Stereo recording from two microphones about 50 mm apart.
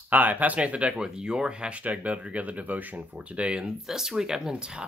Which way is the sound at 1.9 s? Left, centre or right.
Right.